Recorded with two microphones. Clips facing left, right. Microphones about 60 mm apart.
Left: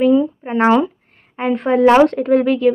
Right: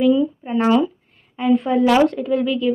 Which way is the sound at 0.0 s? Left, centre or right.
Left.